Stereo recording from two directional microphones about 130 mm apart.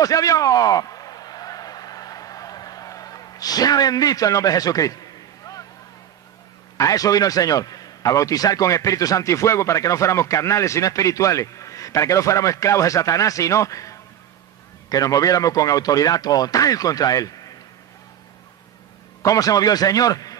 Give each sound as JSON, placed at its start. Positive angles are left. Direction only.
{"t": 0.0, "sound": "a sound", "side_deg": 25}
{"t": 6.8, "sound": "a man's voice", "side_deg": 25}
{"t": 19.2, "sound": "a man's voice", "side_deg": 25}